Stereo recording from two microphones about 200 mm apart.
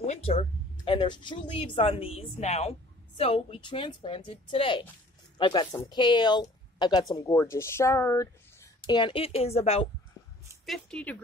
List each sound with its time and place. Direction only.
0.0 s a woman's voice: 30° left (ahead or behind)
10.6 s a woman's voice: 5° left (ahead or behind)